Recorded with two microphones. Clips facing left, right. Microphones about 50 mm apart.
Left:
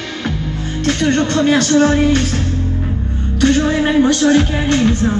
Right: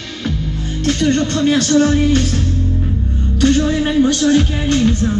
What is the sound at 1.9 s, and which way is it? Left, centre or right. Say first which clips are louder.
Speech: left 1 dB; left.